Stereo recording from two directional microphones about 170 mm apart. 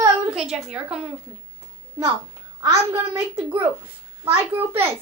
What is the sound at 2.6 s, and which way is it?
Speech, 15° right (ahead or behind).